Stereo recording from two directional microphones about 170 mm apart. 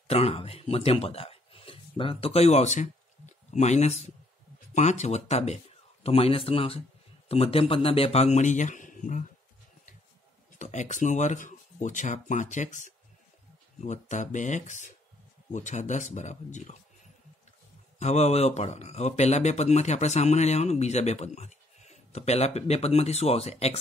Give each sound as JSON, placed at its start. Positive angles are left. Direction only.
{"t": 0.1, "sound": "a man's voice", "side_deg": 35}
{"t": 10.6, "sound": "speech", "side_deg": 45}
{"t": 17.9, "sound": "speech", "side_deg": 40}